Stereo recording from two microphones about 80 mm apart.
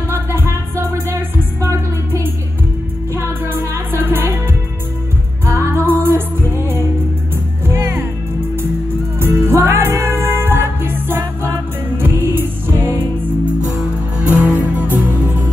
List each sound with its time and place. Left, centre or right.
0.1 s music: right
5.4 s music: right
9.2 s music: right
14.2 s music: centre